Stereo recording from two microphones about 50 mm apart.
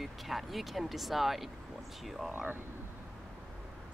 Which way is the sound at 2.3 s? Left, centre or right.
Right.